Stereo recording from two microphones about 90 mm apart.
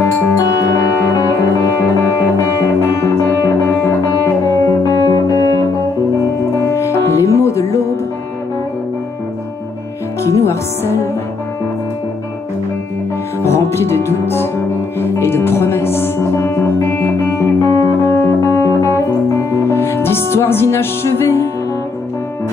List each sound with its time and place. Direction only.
0.0 s music: 40° left (ahead or behind)
3.0 s music: 35° left (ahead or behind)
6.7 s music: 35° left (ahead or behind)
10.2 s music: 30° left (ahead or behind)
13.4 s music: 30° left (ahead or behind)